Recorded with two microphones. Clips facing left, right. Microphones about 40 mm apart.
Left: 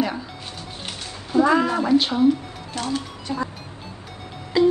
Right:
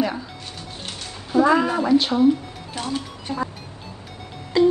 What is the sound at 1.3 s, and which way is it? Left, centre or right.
Speech, centre.